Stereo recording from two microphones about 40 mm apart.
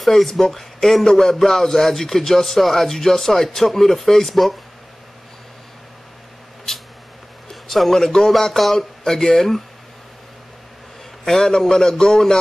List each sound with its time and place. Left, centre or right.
0.0 s speech: centre
7.6 s a sound: centre
7.9 s speech: centre
8.3 s speech: centre
11.2 s speech: centre